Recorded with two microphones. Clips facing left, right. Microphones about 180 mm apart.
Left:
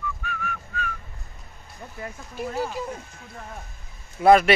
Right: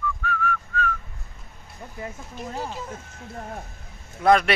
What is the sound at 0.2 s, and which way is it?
Whistling, 15° left (ahead or behind).